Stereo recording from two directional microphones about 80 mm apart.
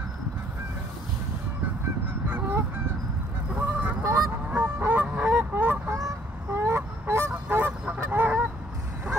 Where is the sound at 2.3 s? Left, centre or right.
Right.